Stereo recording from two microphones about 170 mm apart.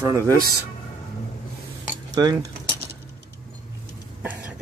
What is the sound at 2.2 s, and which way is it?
Speech, 25° right (ahead or behind).